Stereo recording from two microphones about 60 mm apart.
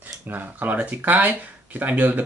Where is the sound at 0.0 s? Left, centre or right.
Right.